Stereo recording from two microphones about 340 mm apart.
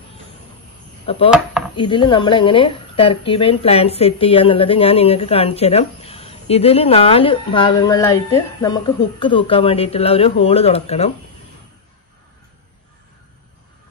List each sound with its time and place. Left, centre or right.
1.1 s a woman's voice: centre